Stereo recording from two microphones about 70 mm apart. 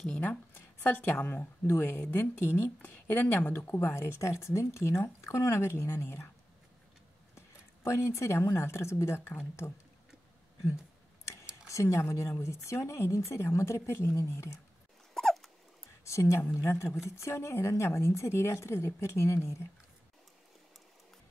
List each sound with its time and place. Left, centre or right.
0.1 s a woman's voice: left
7.3 s speech: left
11.2 s a woman's voice: left
15.1 s dog: centre
16.1 s a woman's voice: left